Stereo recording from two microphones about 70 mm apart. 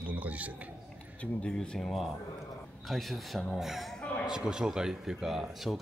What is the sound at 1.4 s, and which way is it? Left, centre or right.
Speech, centre.